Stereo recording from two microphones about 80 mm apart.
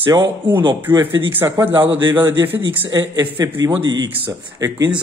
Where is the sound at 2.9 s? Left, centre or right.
Right.